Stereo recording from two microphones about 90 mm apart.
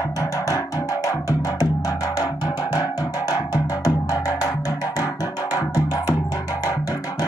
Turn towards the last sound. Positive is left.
turn(degrees=45)  # may be behind; listen again after turning